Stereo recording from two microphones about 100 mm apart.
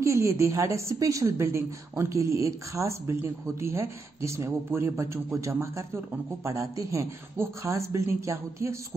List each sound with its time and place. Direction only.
0.0 s a woman's voice: 30° right (ahead or behind)